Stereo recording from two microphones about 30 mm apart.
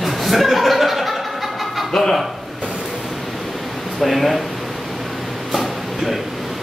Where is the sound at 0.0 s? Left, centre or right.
Centre.